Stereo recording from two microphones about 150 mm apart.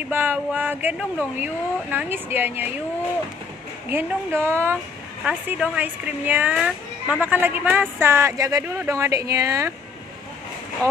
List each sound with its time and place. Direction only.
0.1 s a child's voice: 15° right (ahead or behind)
3.9 s a child's voice: 15° right (ahead or behind)
10.8 s speech: 20° right (ahead or behind)